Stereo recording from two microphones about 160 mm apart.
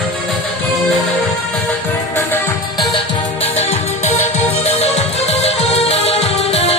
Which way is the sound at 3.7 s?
40° left (ahead or behind).